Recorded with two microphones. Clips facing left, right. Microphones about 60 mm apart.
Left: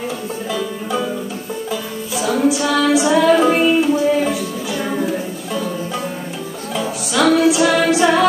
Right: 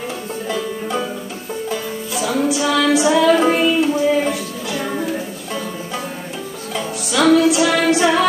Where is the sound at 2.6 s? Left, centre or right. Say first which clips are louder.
Even; left.